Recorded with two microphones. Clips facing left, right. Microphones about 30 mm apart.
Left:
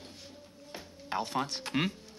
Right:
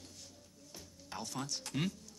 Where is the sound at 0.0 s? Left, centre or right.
Left.